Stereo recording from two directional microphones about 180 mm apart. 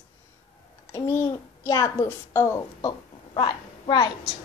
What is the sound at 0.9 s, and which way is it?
A child's voice, 15° left (ahead or behind).